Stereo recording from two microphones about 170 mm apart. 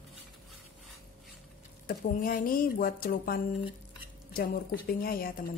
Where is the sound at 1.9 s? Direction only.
55° left (ahead or behind).